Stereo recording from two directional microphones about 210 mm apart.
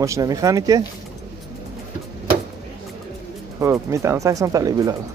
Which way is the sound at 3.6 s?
15° right (ahead or behind).